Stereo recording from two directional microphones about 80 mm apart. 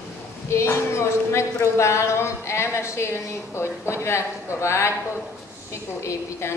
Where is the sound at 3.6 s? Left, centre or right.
Left.